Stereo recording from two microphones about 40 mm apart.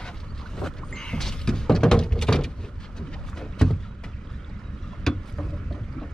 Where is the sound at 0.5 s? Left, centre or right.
Centre.